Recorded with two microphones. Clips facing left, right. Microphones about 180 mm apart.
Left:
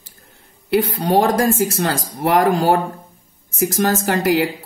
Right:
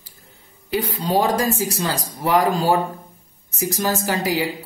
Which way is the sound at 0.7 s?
80° left.